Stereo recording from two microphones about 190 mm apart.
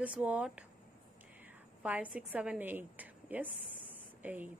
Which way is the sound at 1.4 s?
10° right (ahead or behind).